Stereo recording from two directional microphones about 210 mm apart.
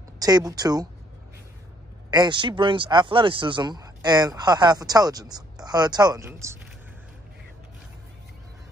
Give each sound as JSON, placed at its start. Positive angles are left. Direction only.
{"t": 0.2, "sound": "speech", "side_deg": -15}
{"t": 2.0, "sound": "speech", "side_deg": -20}